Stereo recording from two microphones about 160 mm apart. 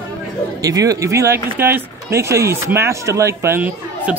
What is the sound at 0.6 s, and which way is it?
Speech, 20° right (ahead or behind).